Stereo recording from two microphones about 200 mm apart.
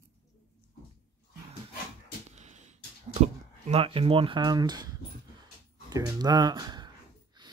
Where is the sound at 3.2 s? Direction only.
30° right (ahead or behind).